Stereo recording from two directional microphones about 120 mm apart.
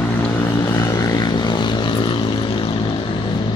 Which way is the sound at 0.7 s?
30° left (ahead or behind).